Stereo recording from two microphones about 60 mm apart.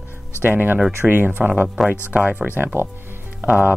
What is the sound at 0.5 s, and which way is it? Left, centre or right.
Speech, right.